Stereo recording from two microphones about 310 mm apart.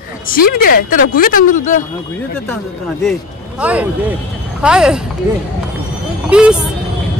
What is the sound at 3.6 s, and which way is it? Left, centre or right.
A man's voice, centre.